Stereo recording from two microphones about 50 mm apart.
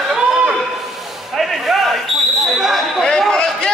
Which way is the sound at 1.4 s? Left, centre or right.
Centre.